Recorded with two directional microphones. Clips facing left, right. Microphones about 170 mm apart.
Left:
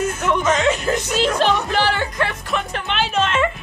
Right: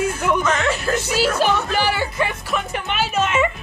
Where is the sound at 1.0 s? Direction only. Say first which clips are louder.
Even; 5° right (ahead or behind).